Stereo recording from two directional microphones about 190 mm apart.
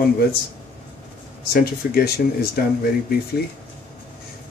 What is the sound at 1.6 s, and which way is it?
Speech, 55° left (ahead or behind).